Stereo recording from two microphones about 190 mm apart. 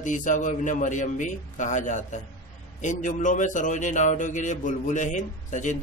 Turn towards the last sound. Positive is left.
turn(degrees=40)  # may be behind; listen again after turning